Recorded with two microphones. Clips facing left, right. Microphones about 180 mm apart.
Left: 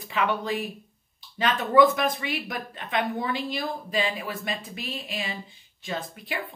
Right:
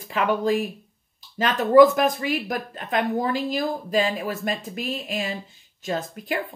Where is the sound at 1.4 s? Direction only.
Centre (ahead or behind).